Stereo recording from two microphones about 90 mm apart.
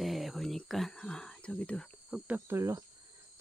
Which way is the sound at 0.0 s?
Centre (ahead or behind).